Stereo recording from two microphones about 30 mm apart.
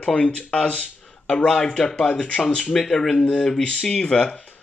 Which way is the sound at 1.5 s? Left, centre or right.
Left.